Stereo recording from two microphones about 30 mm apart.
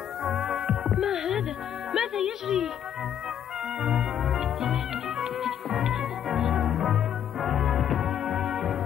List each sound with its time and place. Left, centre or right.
0.2 s music: centre
3.8 s music: centre